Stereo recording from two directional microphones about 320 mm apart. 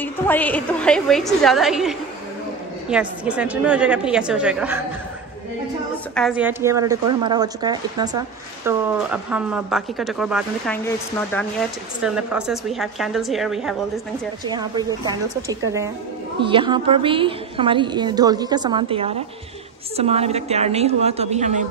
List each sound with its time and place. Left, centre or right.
0.0 s speech: centre
6.1 s speech: centre
12.0 s speech: centre
14.4 s a woman's voice: centre